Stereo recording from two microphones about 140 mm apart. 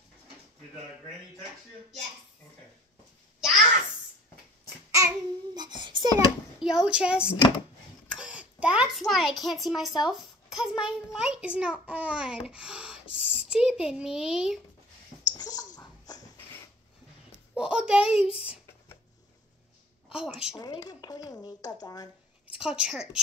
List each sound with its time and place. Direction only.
3.3 s babbling: 5° right (ahead or behind)
4.9 s child singing: 25° right (ahead or behind)
6.6 s a woman's voice: 5° right (ahead or behind)
8.1 s a sound: 10° right (ahead or behind)
9.0 s a child's voice: centre (ahead or behind)
15.2 s a sound: 25° left (ahead or behind)
17.6 s a sound: 5° right (ahead or behind)
18.2 s speech: 40° left (ahead or behind)
20.5 s speech: 25° left (ahead or behind)
22.6 s a child's voice: 5° right (ahead or behind)